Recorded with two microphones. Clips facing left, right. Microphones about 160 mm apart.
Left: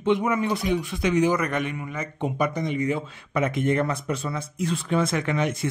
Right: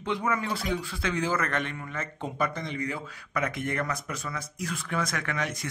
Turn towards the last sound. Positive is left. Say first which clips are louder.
# left 7 dB
turn(degrees=20)  # may be behind; listen again after turning